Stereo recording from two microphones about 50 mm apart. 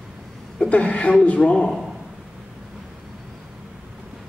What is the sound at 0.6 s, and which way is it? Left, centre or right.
A man's voice, left.